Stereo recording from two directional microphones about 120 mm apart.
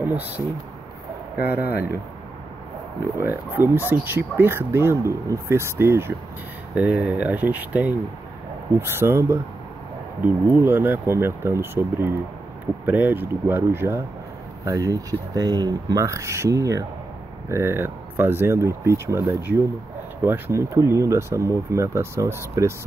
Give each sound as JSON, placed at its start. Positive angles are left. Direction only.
{"t": 0.0, "sound": "speech", "side_deg": -15}
{"t": 1.4, "sound": "speech", "side_deg": -15}
{"t": 3.2, "sound": "speech", "side_deg": -15}